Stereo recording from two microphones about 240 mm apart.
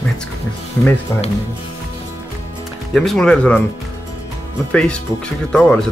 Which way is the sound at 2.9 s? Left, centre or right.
Centre.